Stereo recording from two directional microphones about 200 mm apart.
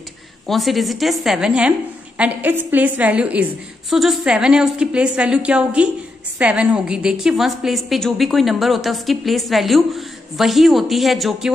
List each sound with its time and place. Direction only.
0.5 s a woman's voice: centre (ahead or behind)